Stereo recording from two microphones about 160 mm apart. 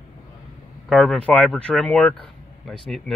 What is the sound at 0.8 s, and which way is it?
Speech, 5° left (ahead or behind).